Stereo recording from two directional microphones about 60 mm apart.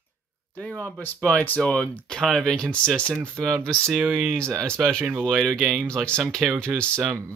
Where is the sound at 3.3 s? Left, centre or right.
Right.